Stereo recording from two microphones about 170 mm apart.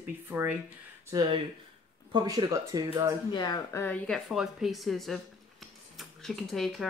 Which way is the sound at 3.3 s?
25° left (ahead or behind).